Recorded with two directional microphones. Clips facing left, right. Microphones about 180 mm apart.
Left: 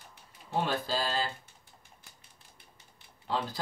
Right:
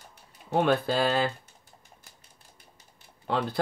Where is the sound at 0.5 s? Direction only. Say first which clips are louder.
Right 7 dB; 60° right (ahead or behind).